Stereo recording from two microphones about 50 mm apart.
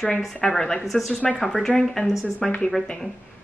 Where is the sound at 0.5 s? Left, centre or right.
Centre.